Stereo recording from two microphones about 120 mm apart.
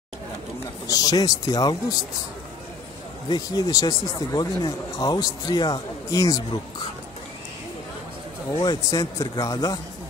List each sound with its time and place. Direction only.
0.8 s speech: 30° left (ahead or behind)
3.3 s speech: 35° left (ahead or behind)
8.5 s speech: 35° left (ahead or behind)